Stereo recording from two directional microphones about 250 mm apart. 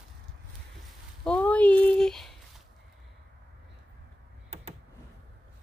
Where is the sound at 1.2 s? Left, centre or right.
Centre.